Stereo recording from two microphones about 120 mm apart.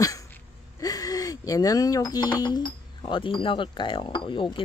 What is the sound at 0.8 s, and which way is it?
Speech, 30° left (ahead or behind).